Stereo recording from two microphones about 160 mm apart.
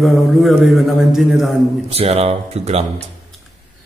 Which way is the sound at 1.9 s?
40° right (ahead or behind).